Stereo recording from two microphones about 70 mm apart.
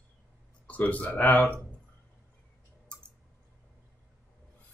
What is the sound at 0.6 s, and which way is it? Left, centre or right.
Speech, centre.